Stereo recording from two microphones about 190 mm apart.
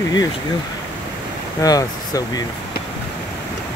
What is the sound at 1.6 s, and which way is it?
Speech, 20° left (ahead or behind).